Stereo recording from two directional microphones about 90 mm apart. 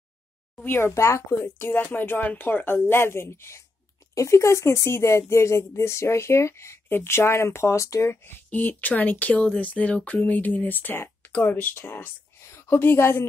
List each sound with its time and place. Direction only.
0.7 s a woman's voice: 25° left (ahead or behind)